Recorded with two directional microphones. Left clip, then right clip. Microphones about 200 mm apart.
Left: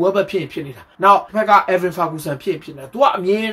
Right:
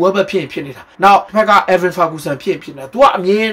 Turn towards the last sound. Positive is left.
turn(degrees=-5)  # may be behind; listen again after turning